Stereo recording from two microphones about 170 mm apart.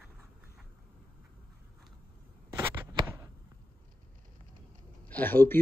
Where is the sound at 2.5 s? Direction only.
25° right (ahead or behind).